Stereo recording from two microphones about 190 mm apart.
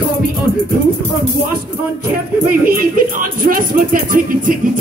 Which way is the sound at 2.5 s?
50° right (ahead or behind).